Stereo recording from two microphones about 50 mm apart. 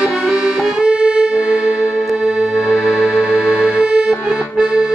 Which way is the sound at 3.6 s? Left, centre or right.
Centre.